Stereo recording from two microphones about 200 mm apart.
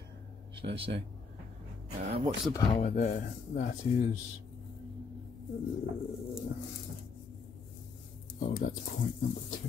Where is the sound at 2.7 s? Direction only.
40° left (ahead or behind).